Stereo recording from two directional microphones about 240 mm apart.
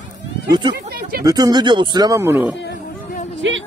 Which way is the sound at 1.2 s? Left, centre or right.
Centre.